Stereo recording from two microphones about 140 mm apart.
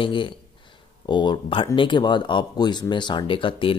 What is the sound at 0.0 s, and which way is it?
Speech, 35° left (ahead or behind).